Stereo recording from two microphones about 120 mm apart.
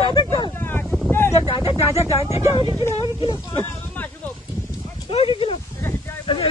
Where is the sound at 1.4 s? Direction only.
45° left (ahead or behind).